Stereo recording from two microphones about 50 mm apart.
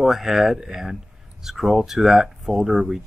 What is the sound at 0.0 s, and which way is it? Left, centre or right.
Speech, centre.